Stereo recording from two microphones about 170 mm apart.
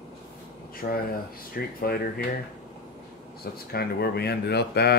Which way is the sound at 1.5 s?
60° left (ahead or behind).